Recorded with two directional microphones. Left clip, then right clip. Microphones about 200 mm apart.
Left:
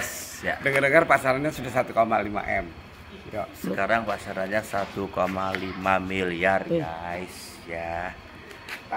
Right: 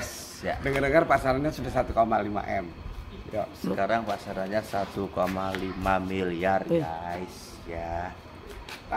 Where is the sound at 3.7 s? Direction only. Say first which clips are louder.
Left 3 dB; 5° left (ahead or behind); by 8.1 s 20° left (ahead or behind).